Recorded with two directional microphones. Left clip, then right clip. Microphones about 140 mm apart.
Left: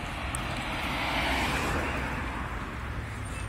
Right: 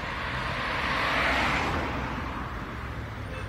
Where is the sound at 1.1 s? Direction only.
5° left (ahead or behind).